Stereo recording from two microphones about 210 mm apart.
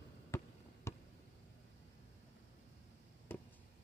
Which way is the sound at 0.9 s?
10° left (ahead or behind).